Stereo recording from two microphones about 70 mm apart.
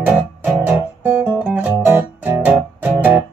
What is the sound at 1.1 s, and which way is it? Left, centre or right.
Music, right.